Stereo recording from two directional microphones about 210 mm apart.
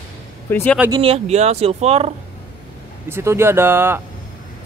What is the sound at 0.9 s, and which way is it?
Speech, 25° right (ahead or behind).